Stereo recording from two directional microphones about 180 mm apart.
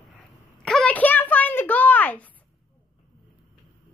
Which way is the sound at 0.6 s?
5° left (ahead or behind).